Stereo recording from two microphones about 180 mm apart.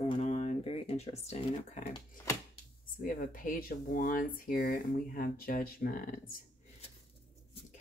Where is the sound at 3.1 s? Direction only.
50° left (ahead or behind).